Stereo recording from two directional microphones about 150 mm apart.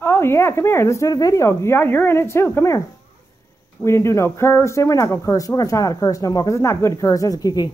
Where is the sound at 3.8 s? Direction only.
20° left (ahead or behind).